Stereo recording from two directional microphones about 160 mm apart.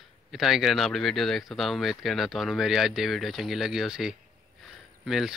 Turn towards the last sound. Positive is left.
turn(degrees=0)  # may be behind; listen again after turning